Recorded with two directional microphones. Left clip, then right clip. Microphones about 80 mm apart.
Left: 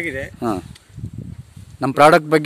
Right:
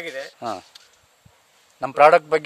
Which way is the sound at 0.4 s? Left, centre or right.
Centre.